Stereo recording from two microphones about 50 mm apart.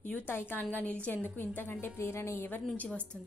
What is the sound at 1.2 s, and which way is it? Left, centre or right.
Speech, left.